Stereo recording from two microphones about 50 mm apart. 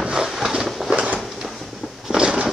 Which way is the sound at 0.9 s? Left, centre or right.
Right.